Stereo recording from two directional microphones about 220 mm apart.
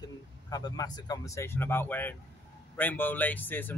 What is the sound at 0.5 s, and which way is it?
Speech, 20° left (ahead or behind).